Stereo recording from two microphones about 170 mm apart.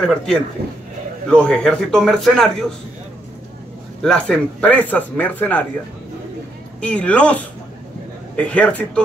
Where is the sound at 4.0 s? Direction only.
5° left (ahead or behind).